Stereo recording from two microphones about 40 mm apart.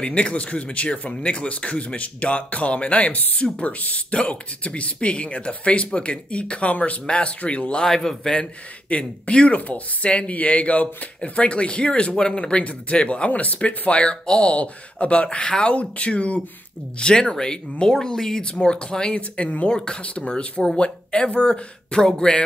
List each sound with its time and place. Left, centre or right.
0.0 s speech: left
7.8 s speech: centre
8.4 s speech: left
19.1 s speech: left
19.7 s speech: left